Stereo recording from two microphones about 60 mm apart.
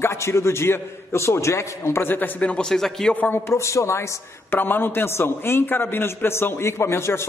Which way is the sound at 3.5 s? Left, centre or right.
Left.